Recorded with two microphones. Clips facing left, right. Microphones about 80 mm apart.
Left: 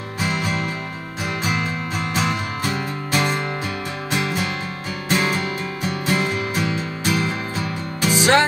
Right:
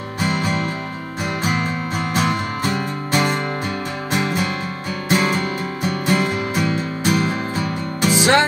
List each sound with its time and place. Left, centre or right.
0.2 s music: right
8.1 s music: right